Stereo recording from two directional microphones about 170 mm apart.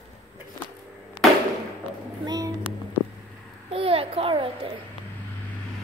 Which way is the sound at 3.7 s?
35° right (ahead or behind).